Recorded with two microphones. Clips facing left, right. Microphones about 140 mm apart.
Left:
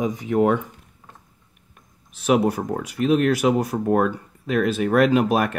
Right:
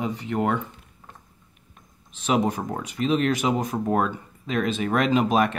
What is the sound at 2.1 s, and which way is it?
Speech, 10° left (ahead or behind).